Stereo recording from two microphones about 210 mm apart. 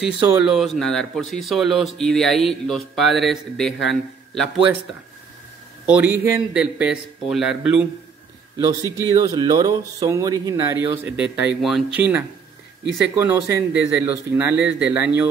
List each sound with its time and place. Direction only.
0.0 s speech: 5° right (ahead or behind)
5.9 s speech: 10° right (ahead or behind)
9.1 s speech: 20° right (ahead or behind)